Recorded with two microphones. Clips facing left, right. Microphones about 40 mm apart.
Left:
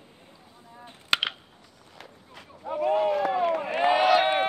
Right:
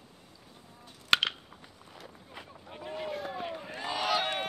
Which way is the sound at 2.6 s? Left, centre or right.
Left.